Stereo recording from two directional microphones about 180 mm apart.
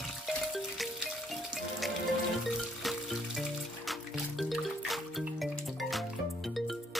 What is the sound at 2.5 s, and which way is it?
Music, centre (ahead or behind).